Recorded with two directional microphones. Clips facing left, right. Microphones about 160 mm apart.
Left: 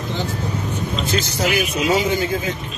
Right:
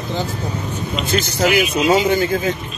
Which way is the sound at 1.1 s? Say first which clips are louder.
Right 5 dB; 20° left (ahead or behind).